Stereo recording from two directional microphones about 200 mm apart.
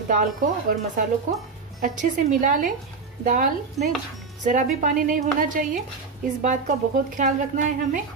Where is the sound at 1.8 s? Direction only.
40° right (ahead or behind).